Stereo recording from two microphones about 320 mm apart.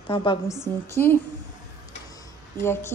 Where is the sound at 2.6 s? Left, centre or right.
Centre.